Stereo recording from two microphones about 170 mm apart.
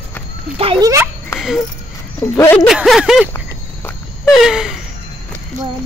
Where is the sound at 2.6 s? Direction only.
Centre (ahead or behind).